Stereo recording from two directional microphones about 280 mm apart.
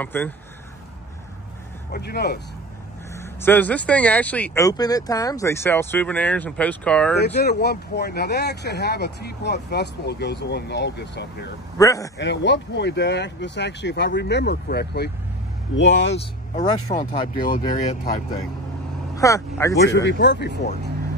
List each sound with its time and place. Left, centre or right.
0.0 s speech: centre
1.9 s speech: left
3.2 s speech: centre
7.3 s speech: left
11.8 s speech: centre
12.2 s speech: left
16.2 s speech: left
19.1 s speech: centre
19.9 s speech: left